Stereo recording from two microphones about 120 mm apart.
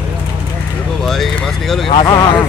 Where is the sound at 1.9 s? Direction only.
35° left (ahead or behind).